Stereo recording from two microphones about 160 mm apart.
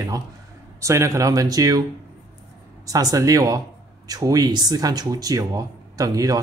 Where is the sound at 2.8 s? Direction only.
20° right (ahead or behind).